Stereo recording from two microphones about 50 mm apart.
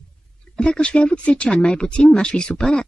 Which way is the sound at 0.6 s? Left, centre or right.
Left.